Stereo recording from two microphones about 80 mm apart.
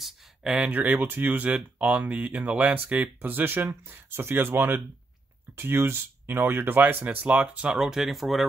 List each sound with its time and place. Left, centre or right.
0.0 s a sound: centre
0.7 s speech: right
7.2 s speech: centre